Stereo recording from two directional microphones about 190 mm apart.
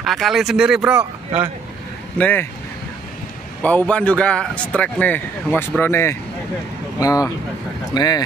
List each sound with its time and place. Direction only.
0.0 s speech: centre (ahead or behind)
2.1 s speech: 10° left (ahead or behind)
3.6 s speech: 5° left (ahead or behind)